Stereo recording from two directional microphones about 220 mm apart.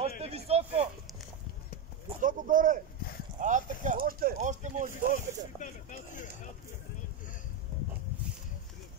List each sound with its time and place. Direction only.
0.2 s a sound: 30° right (ahead or behind)
2.2 s speech: 35° right (ahead or behind)
5.6 s speech: 35° left (ahead or behind)